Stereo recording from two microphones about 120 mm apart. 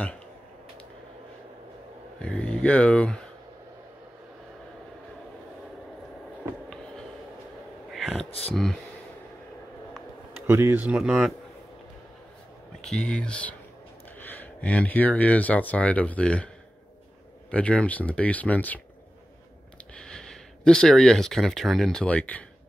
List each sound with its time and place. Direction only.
2.1 s speech: 10° left (ahead or behind)
7.9 s a sound: centre (ahead or behind)
8.3 s speech: 55° left (ahead or behind)
10.4 s speech: 20° right (ahead or behind)
10.8 s speech: 10° right (ahead or behind)
12.8 s speech: 5° left (ahead or behind)
17.5 s speech: 10° left (ahead or behind)
19.9 s speech: 5° left (ahead or behind)